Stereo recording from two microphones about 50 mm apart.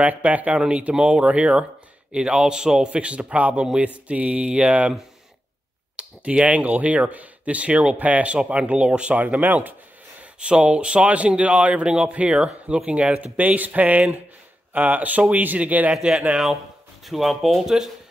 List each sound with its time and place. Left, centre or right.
0.0 s speech: right
5.9 s speech: right
10.4 s speech: centre
15.9 s speech: centre
17.0 s speech: centre